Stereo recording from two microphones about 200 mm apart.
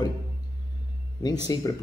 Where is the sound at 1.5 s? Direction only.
20° left (ahead or behind).